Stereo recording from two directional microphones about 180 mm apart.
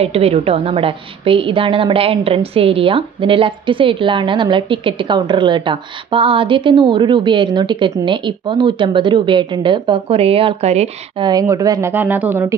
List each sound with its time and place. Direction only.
0.0 s a woman's voice: 35° right (ahead or behind)
11.2 s speech: 20° right (ahead or behind)